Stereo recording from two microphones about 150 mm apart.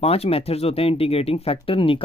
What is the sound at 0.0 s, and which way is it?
Speech, 40° left (ahead or behind).